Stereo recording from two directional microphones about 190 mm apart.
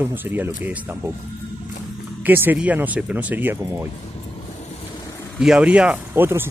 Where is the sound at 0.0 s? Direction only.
10° right (ahead or behind).